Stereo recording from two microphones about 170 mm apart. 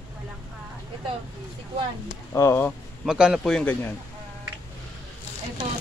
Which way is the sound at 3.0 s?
5° right (ahead or behind).